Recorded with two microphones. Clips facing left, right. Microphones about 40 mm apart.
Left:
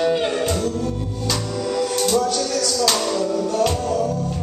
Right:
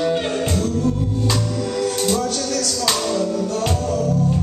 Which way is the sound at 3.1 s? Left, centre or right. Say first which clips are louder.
Right 1 dB; centre.